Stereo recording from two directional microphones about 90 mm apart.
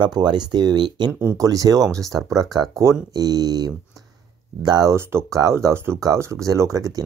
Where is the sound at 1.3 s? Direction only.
40° right (ahead or behind).